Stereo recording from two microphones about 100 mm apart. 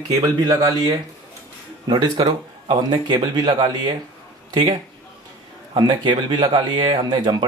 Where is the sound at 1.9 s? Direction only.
50° right (ahead or behind).